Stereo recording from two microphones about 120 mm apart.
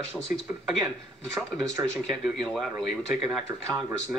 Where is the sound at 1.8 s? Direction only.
20° right (ahead or behind).